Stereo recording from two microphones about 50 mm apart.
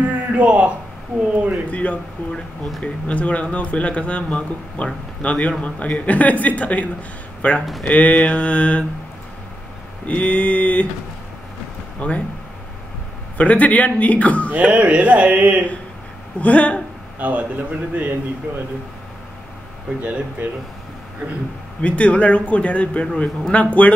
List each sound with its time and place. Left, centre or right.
0.0 s a sound: right
1.7 s speech: left
10.0 s speech: left
12.0 s speech: left
13.4 s speech: left
14.5 s speech: right
16.3 s speech: left
17.2 s a man's voice: right
20.0 s a man's voice: right
21.8 s speech: left